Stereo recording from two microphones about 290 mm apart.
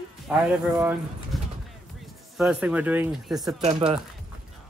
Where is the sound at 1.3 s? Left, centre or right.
Centre.